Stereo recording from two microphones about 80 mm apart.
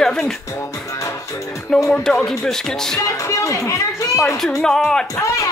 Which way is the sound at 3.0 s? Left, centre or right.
Left.